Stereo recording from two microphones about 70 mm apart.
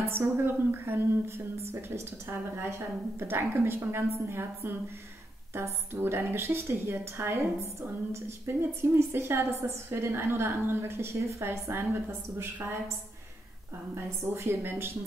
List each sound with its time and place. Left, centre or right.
0.1 s a woman's voice: right
13.9 s a woman's voice: right